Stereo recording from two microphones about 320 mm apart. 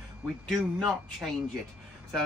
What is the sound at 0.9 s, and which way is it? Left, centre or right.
Speech, centre.